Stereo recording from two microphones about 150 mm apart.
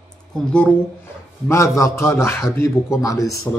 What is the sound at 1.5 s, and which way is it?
A man's voice, 20° left (ahead or behind).